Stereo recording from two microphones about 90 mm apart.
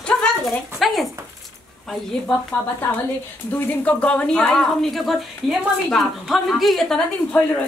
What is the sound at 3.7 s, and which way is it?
A woman's voice, 15° left (ahead or behind).